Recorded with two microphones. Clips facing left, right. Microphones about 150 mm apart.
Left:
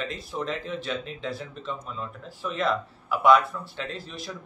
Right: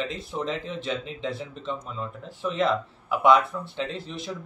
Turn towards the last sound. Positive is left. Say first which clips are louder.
# right 3 dB
turn(degrees=-25)  # may be behind; listen again after turning